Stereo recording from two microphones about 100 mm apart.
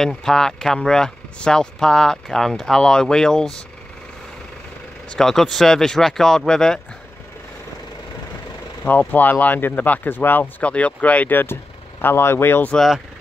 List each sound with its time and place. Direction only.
0.0 s speech: 5° left (ahead or behind)
5.1 s speech: 5° left (ahead or behind)
8.8 s speech: 15° left (ahead or behind)
12.7 s speech: centre (ahead or behind)